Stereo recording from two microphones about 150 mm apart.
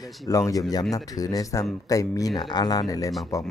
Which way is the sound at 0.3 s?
20° left (ahead or behind).